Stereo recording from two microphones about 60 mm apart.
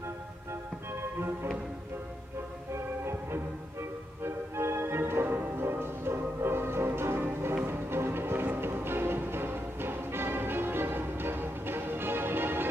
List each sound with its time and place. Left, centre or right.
2.7 s music: right